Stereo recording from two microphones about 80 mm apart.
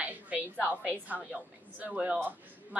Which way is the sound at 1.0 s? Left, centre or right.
Centre.